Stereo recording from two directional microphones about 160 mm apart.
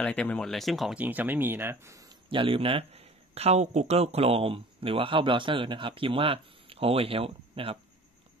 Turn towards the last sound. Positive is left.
turn(degrees=-35)  # may be behind; listen again after turning